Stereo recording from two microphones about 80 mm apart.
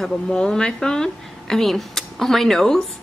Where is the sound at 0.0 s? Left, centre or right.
Centre.